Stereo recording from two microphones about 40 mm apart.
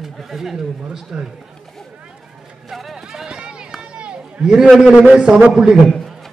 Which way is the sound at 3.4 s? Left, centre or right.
Right.